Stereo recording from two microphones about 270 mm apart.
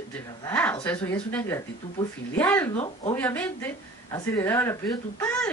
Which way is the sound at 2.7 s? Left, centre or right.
Left.